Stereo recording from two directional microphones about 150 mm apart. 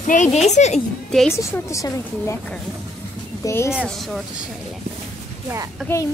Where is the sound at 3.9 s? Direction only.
Centre (ahead or behind).